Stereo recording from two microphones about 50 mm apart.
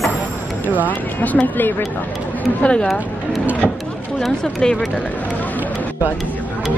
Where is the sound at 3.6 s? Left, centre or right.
Centre.